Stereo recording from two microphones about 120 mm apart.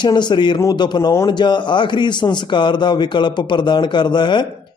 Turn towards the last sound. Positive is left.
turn(degrees=40)  # may be behind; listen again after turning